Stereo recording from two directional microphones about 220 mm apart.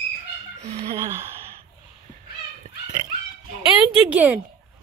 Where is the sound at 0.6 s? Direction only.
25° right (ahead or behind).